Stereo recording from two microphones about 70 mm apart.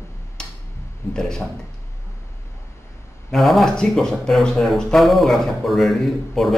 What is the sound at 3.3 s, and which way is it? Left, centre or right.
Speech, centre.